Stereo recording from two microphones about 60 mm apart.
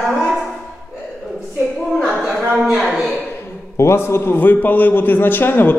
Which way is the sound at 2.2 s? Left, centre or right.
Centre.